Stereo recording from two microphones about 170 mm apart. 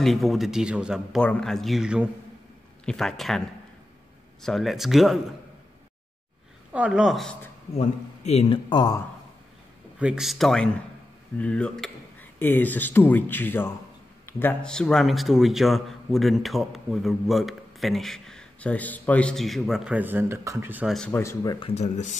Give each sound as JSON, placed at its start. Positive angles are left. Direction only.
{"t": 0.0, "sound": "a man's voice", "side_deg": 0}
{"t": 6.7, "sound": "a man's voice", "side_deg": -5}
{"t": 7.7, "sound": "a man's voice", "side_deg": 40}
{"t": 8.6, "sound": "speech", "side_deg": 25}
{"t": 9.9, "sound": "a man's voice", "side_deg": -5}
{"t": 20.9, "sound": "a man's voice", "side_deg": 5}
{"t": 21.2, "sound": "speech", "side_deg": 20}